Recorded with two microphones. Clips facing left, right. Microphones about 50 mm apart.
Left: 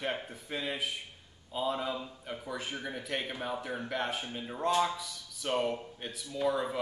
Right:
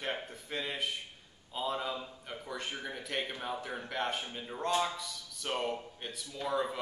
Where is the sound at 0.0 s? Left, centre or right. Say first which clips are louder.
Left 2 dB; centre.